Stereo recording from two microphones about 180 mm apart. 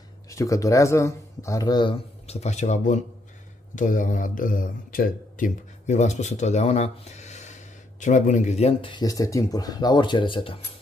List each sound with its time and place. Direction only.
0.3 s speech: 15° left (ahead or behind)